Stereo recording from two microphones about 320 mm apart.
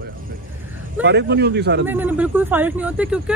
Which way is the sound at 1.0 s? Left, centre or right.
Right.